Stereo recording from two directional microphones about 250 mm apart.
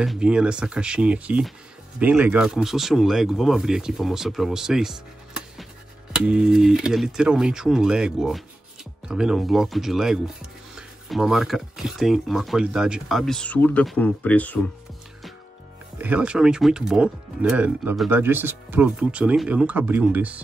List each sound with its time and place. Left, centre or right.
0.0 s speech: centre
16.0 s speech: centre